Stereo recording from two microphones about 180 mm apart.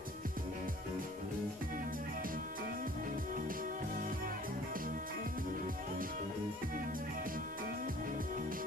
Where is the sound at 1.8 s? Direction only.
50° right (ahead or behind).